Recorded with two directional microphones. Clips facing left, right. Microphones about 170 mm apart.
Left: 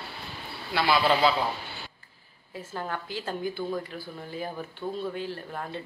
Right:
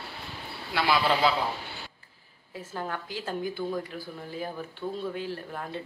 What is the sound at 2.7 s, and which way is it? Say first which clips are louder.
Speech: left 1 dB; 5° right (ahead or behind).